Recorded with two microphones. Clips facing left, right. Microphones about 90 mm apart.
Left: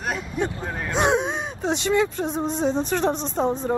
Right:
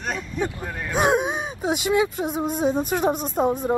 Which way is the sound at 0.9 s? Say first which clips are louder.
Right 1 dB; 5° right (ahead or behind).